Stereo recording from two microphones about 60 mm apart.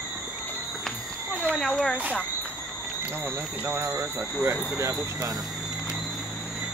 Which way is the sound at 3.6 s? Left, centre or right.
Right.